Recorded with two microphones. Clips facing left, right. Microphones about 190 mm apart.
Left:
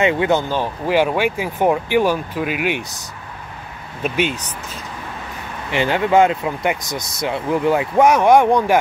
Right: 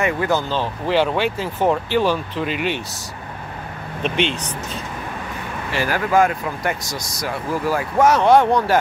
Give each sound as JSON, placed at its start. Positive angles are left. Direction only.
{"t": 0.0, "sound": "speech", "side_deg": 25}
{"t": 4.0, "sound": "speech", "side_deg": 5}
{"t": 5.7, "sound": "speech", "side_deg": 20}